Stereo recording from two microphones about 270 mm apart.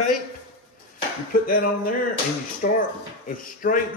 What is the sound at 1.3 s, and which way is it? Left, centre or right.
A man's voice, left.